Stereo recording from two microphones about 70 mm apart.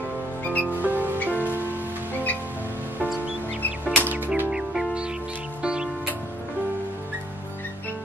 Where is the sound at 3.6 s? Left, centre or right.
Left.